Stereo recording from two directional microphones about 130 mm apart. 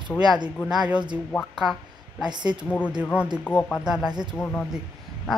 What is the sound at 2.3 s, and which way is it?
Speech, 35° right (ahead or behind).